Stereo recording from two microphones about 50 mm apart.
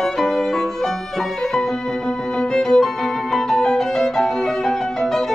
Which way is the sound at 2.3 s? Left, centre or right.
Centre.